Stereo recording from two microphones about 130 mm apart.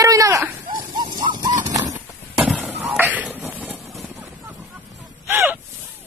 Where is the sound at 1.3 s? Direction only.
30° right (ahead or behind).